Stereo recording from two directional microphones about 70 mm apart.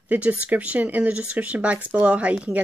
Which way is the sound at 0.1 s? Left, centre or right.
Right.